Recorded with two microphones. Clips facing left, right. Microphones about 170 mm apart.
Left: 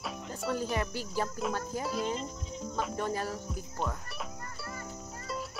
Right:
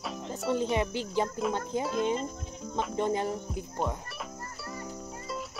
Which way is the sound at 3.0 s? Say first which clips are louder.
Right 5 dB; 20° right (ahead or behind).